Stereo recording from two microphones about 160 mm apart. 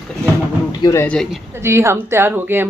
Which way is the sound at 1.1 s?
Centre (ahead or behind).